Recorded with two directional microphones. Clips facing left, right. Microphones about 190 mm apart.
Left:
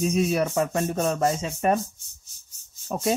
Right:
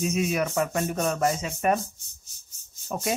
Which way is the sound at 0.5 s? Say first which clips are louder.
Left 2 dB; 20° left (ahead or behind).